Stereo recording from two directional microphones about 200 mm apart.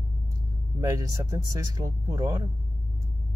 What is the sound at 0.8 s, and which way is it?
Speech, 15° right (ahead or behind).